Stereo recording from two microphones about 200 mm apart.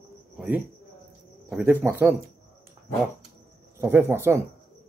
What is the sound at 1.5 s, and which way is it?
Speech, 5° right (ahead or behind).